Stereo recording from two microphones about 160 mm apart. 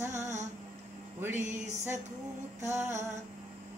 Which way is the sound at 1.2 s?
15° right (ahead or behind).